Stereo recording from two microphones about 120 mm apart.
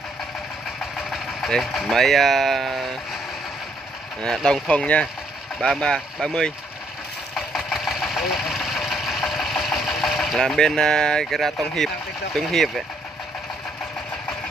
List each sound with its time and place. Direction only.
1.1 s speech: centre (ahead or behind)
4.2 s speech: 5° left (ahead or behind)
7.3 s engine: centre (ahead or behind)
12.4 s speech: centre (ahead or behind)